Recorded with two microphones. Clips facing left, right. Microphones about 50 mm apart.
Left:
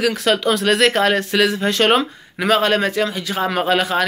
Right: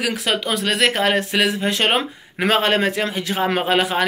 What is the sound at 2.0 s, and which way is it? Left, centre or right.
Speech, right.